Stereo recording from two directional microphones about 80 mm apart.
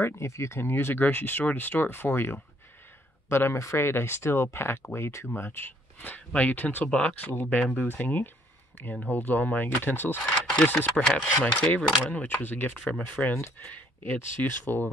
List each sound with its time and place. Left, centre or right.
0.0 s speech: left
10.2 s a sound: centre
10.7 s speech: left
11.4 s cutlery: centre
12.0 s speech: centre